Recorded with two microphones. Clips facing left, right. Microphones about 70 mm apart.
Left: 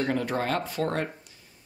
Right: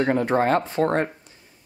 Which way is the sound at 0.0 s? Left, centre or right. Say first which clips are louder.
Right 7 dB; right.